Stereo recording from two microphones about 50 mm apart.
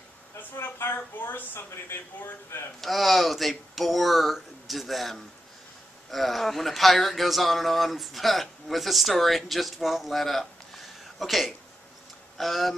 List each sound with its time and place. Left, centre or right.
0.4 s a woman's voice: left
2.8 s speech: centre